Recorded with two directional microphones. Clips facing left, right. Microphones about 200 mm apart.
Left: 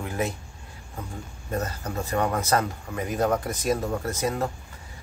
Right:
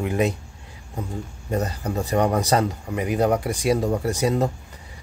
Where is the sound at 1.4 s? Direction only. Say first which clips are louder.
Right 4 dB; 15° right (ahead or behind).